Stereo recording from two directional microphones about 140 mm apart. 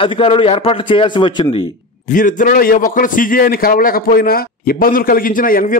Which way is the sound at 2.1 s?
70° left (ahead or behind).